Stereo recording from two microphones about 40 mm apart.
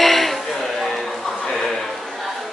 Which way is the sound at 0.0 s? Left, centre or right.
Centre.